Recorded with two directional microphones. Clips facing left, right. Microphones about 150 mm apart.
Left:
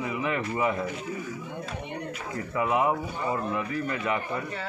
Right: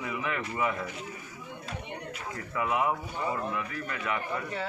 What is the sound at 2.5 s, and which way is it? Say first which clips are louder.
Speech: left 4 dB; 25° left (ahead or behind).